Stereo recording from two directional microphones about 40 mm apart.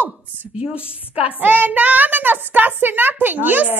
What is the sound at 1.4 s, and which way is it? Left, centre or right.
A child's voice, right.